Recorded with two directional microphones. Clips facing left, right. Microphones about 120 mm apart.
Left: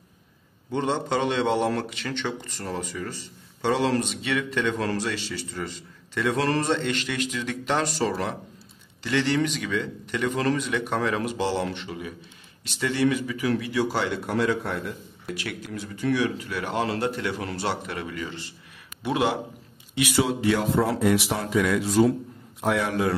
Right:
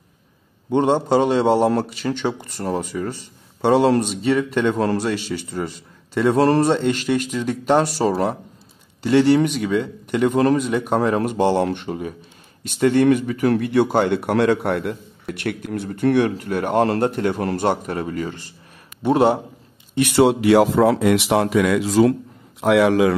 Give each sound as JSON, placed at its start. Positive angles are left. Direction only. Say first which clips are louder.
{"t": 0.7, "sound": "a man's voice", "louder": "right 8 dB", "side_deg": -50}
{"t": 9.0, "sound": "a man's voice", "louder": "right 9 dB", "side_deg": -45}
{"t": 19.9, "sound": "a man's voice", "louder": "right 8 dB", "side_deg": -55}